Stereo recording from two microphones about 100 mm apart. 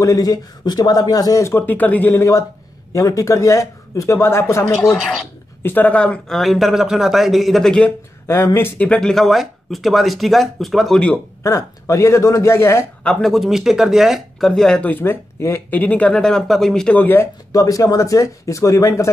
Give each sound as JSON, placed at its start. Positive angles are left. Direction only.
{"t": 0.0, "sound": "speech", "side_deg": 40}
{"t": 1.8, "sound": "speech", "side_deg": 15}
{"t": 4.9, "sound": "speech", "side_deg": 0}
{"t": 5.6, "sound": "speech", "side_deg": 20}
{"t": 8.5, "sound": "speech", "side_deg": 20}
{"t": 11.4, "sound": "speech", "side_deg": 30}
{"t": 13.0, "sound": "speech", "side_deg": 5}
{"t": 14.9, "sound": "speech", "side_deg": 20}
{"t": 17.0, "sound": "speech", "side_deg": 20}
{"t": 17.5, "sound": "speech", "side_deg": 35}